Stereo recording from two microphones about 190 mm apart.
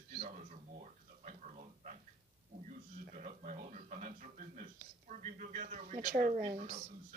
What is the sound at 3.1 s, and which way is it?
Speech, 45° right (ahead or behind).